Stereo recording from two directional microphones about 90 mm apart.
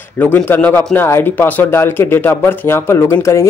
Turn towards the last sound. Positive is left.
turn(degrees=35)  # may be behind; listen again after turning